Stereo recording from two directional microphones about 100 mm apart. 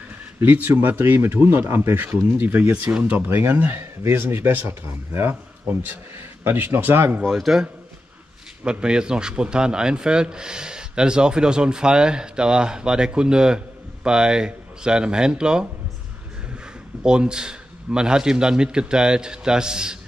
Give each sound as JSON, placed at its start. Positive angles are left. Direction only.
{"t": 0.4, "sound": "speech", "side_deg": -20}
{"t": 7.2, "sound": "a man's voice", "side_deg": 0}
{"t": 17.0, "sound": "speech", "side_deg": -10}